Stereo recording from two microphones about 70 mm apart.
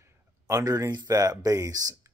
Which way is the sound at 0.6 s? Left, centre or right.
Right.